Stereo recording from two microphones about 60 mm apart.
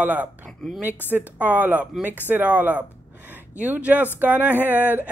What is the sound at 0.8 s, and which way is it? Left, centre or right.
A woman's voice, right.